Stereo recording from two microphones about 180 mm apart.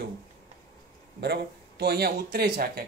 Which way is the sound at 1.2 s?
65° right (ahead or behind).